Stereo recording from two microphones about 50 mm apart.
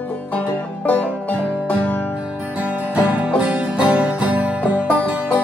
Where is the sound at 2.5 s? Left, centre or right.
Right.